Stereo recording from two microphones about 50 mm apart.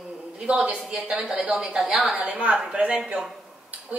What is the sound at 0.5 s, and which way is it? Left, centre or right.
A woman's voice, right.